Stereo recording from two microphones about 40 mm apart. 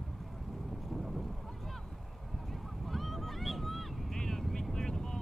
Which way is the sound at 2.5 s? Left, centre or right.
Centre.